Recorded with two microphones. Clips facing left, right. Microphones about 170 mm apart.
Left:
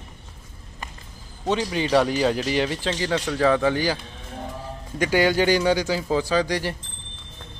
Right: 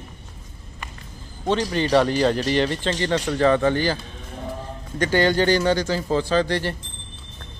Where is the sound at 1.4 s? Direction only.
5° left (ahead or behind).